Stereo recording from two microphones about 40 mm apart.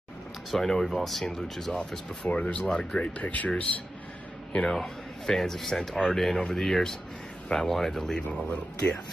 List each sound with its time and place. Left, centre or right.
0.5 s speech: centre
2.3 s speech: left
3.2 s speech: left
4.6 s speech: centre
8.2 s speech: left